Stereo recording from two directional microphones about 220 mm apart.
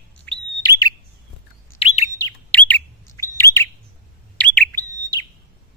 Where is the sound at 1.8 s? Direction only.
25° left (ahead or behind).